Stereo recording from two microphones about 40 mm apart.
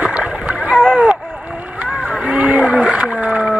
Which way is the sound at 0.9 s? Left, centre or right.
Right.